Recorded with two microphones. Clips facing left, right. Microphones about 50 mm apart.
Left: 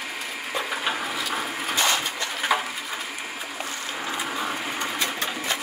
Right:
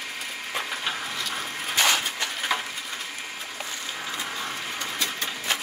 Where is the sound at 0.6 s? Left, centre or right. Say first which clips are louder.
Left 4 dB; centre.